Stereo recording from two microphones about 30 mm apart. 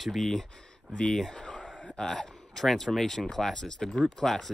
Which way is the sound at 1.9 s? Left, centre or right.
Left.